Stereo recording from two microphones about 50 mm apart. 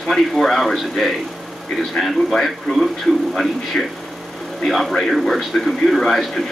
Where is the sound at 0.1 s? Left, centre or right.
Centre.